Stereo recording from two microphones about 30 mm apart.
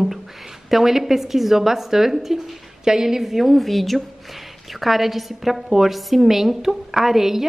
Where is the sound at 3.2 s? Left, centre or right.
Centre.